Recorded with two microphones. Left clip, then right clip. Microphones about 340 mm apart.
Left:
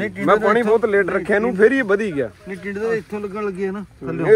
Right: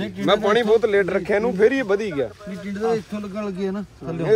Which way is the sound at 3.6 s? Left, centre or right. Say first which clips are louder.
Left 2 dB; left.